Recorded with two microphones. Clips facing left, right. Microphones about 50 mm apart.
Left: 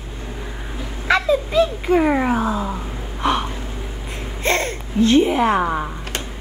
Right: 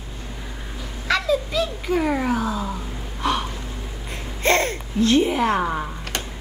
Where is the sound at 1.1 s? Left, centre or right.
Left.